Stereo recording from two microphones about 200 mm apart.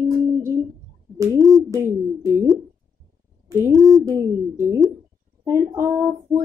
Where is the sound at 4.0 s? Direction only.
15° right (ahead or behind).